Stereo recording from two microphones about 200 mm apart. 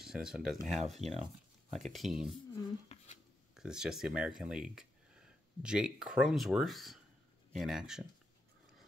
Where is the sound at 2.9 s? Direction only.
35° left (ahead or behind).